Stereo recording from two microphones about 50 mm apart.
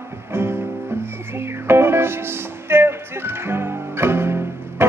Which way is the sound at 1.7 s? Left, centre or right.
Right.